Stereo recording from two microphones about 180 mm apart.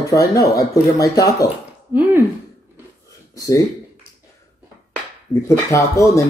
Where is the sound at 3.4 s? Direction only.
20° left (ahead or behind).